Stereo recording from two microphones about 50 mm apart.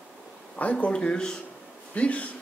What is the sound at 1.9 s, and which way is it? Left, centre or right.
Speech, left.